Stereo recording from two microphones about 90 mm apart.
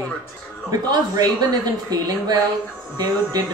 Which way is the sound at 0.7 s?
50° right (ahead or behind).